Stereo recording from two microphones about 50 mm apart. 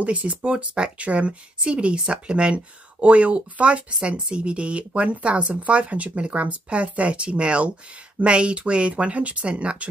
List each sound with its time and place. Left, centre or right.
0.0 s speech: right